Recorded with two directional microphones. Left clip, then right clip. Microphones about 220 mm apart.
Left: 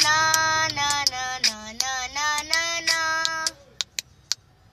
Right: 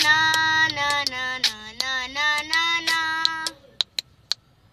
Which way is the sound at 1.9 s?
5° right (ahead or behind).